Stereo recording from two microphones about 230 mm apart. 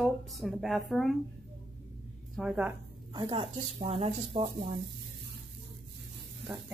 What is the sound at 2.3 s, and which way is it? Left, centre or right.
Speech, centre.